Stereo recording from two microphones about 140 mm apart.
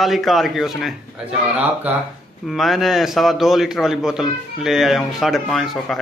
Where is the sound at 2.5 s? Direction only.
Centre (ahead or behind).